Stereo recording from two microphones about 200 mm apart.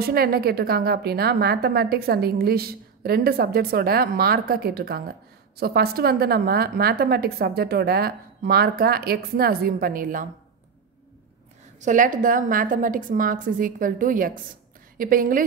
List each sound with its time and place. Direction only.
0.0 s a woman's voice: 50° right (ahead or behind)
11.8 s a woman's voice: 40° right (ahead or behind)